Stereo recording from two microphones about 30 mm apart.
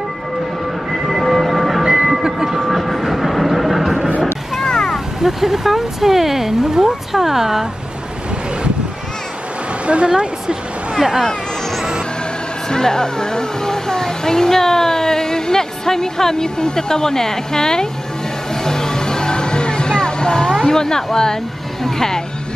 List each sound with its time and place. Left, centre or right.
0.9 s train: centre
4.6 s a sound: centre
4.9 s speech: centre
9.8 s speech: right
12.6 s vehicle: left
16.5 s speech: left
18.5 s music: centre
20.6 s speech: centre